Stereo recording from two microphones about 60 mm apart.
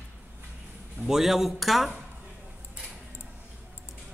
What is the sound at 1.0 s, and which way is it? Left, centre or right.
Speech, centre.